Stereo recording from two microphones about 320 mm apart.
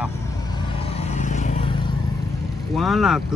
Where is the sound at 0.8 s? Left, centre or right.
Centre.